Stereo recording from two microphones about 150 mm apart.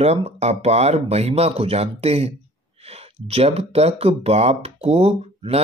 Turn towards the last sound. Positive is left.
turn(degrees=-45)  # may be behind; listen again after turning